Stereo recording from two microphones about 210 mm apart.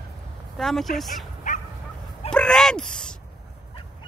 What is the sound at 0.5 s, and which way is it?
Speech, centre (ahead or behind).